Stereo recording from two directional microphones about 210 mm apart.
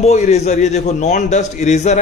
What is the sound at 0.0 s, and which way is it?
Speech, 30° left (ahead or behind).